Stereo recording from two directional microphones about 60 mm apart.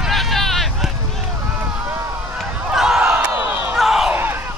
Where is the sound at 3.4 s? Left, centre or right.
Right.